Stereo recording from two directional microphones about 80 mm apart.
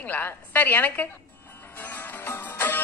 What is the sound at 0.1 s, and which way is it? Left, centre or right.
Speech, left.